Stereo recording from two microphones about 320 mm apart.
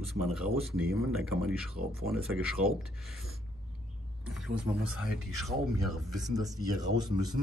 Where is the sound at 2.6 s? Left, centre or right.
Right.